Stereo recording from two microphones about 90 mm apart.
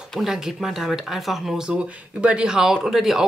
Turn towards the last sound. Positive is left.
turn(degrees=-5)  # may be behind; listen again after turning